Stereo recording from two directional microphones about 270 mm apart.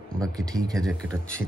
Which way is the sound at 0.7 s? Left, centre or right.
Centre.